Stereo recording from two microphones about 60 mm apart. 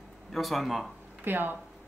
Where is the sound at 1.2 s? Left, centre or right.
Right.